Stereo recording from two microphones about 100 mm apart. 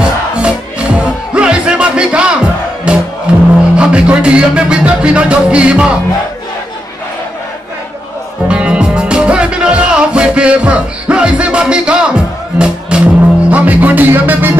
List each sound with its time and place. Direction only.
0.0 s music: 10° right (ahead or behind)
8.5 s music: 10° right (ahead or behind)